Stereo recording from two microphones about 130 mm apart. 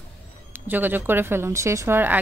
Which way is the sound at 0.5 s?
15° right (ahead or behind).